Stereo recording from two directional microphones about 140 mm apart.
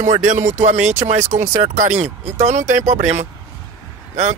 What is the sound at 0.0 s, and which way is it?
Speech, 60° right (ahead or behind).